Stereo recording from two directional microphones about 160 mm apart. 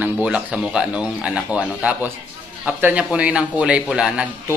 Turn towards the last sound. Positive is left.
turn(degrees=-5)  # may be behind; listen again after turning